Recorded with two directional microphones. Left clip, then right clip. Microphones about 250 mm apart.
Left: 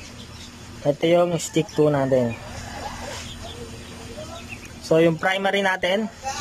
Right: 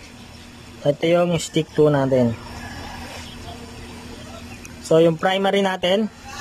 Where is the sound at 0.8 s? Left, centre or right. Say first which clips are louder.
Right 1 dB; centre.